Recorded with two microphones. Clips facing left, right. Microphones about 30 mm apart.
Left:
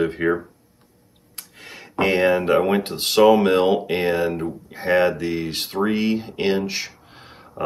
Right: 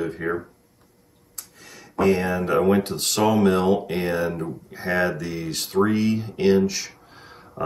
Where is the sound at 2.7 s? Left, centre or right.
Left.